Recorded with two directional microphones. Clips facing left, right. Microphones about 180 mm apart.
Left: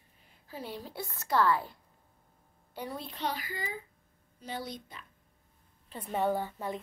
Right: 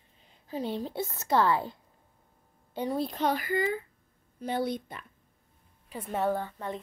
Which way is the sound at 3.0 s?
45° right (ahead or behind).